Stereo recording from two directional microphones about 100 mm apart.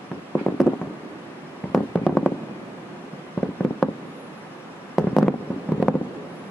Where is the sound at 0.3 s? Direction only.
15° left (ahead or behind).